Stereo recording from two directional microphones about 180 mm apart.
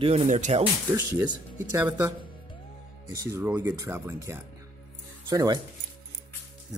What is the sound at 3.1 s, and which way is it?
Speech, 15° right (ahead or behind).